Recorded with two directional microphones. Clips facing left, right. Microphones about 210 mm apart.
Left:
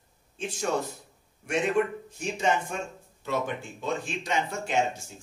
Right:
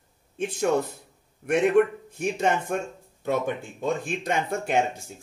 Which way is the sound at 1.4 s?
55° right (ahead or behind).